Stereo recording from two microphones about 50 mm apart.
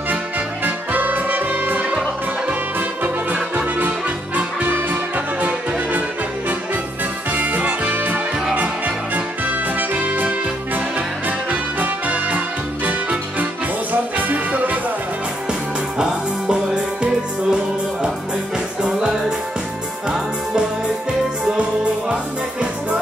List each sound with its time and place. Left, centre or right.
0.7 s music: right
3.0 s music: right
7.3 s music: right
11.8 s music: right
14.1 s music: right
16.0 s music: centre
18.8 s music: centre
22.1 s music: right